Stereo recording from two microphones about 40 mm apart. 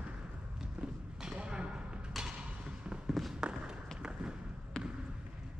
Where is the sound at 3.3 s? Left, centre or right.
Right.